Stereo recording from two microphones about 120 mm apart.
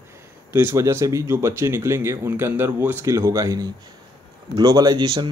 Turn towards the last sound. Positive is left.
turn(degrees=-35)  # may be behind; listen again after turning